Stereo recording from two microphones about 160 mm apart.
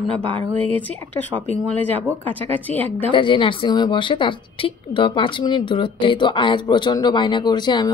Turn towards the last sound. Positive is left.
turn(degrees=25)  # may be behind; listen again after turning